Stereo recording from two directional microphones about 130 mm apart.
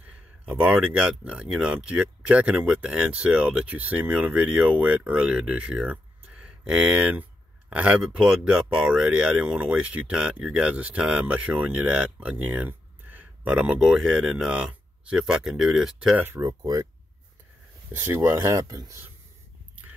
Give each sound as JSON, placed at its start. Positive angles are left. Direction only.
{"t": 0.5, "sound": "speech", "side_deg": -10}
{"t": 16.2, "sound": "speech", "side_deg": -20}
{"t": 17.9, "sound": "speech", "side_deg": -15}
{"t": 18.4, "sound": "speech", "side_deg": -25}